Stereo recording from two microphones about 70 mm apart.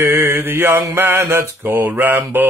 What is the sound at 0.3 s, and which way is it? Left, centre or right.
Mantra, right.